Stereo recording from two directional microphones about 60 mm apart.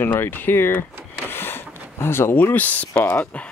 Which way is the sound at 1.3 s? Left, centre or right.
Left.